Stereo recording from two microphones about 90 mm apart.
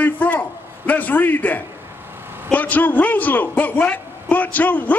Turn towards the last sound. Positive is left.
turn(degrees=20)  # may be behind; listen again after turning